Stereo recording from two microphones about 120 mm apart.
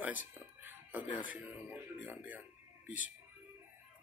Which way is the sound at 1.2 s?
15° right (ahead or behind).